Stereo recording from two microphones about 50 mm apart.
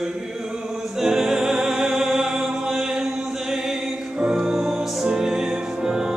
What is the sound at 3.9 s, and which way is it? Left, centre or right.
Music, centre.